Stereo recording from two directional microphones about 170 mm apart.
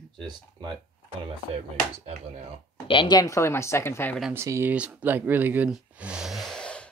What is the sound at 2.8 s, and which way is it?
Speech, 30° left (ahead or behind).